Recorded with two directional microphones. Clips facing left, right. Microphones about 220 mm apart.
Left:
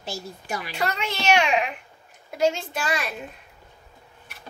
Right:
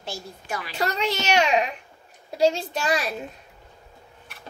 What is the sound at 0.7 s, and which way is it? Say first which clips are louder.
A woman's voice: right 4 dB; 40° right (ahead or behind).